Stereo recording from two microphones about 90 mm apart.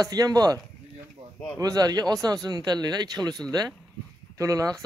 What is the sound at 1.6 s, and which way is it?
Speech, 45° right (ahead or behind).